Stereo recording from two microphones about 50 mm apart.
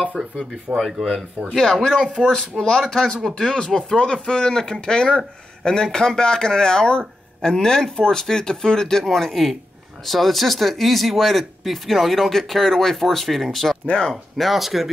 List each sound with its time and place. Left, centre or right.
0.7 s speech: right
1.5 s speech: centre
13.8 s speech: centre
14.1 s speech: centre